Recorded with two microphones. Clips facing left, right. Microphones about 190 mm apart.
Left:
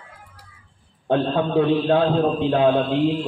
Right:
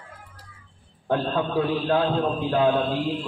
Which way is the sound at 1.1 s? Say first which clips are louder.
Left 4 dB; 20° left (ahead or behind).